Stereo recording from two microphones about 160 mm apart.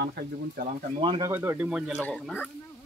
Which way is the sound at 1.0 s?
30° right (ahead or behind).